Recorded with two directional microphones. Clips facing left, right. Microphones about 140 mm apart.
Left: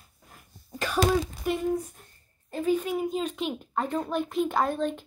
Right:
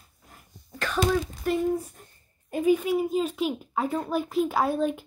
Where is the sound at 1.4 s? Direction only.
Centre (ahead or behind).